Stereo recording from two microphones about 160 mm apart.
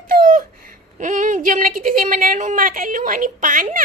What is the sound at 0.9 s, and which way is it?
A woman's voice, 50° right (ahead or behind).